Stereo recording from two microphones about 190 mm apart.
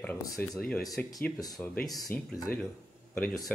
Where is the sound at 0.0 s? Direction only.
10° left (ahead or behind).